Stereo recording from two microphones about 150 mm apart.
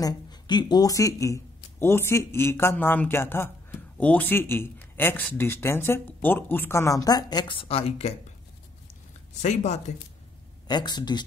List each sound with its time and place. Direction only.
0.0 s speech: 30° left (ahead or behind)
9.4 s speech: 50° left (ahead or behind)
10.7 s speech: 30° left (ahead or behind)